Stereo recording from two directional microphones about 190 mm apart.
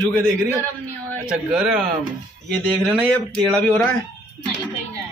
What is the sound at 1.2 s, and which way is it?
Speech, 5° right (ahead or behind).